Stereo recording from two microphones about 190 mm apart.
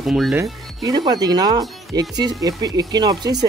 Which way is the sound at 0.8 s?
20° right (ahead or behind).